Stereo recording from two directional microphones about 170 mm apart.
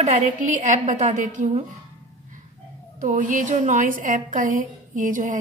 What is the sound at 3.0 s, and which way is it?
A woman's voice, 50° right (ahead or behind).